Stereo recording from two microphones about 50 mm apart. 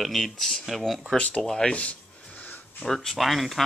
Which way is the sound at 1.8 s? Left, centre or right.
Left.